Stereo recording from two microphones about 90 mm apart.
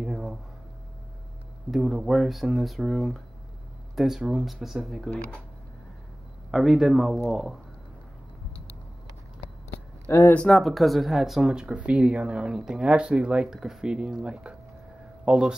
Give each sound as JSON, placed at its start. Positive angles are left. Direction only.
{"t": 0.0, "sound": "a sound", "side_deg": -5}
{"t": 1.7, "sound": "speech", "side_deg": -5}
{"t": 6.5, "sound": "speech", "side_deg": -5}
{"t": 10.1, "sound": "speech", "side_deg": 30}
{"t": 10.5, "sound": "speech", "side_deg": 0}